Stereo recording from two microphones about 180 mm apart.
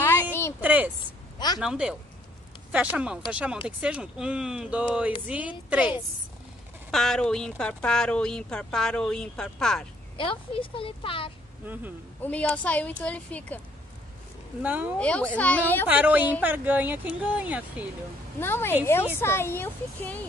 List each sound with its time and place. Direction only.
0.0 s a sound: 15° left (ahead or behind)
0.6 s a sound: 10° right (ahead or behind)
1.6 s speech: 5° right (ahead or behind)
6.9 s speech: centre (ahead or behind)
10.1 s speech: 30° left (ahead or behind)
11.6 s speech: 10° right (ahead or behind)
12.2 s speech: 10° left (ahead or behind)
14.6 s speech: 10° right (ahead or behind)
15.0 s speech: 5° left (ahead or behind)
15.9 s speech: 10° right (ahead or behind)
18.4 s speech: 10° left (ahead or behind)